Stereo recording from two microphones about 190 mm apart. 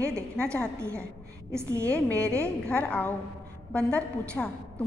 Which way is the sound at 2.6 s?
5° left (ahead or behind).